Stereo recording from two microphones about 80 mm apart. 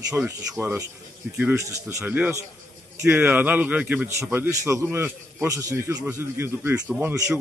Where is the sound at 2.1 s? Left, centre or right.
Right.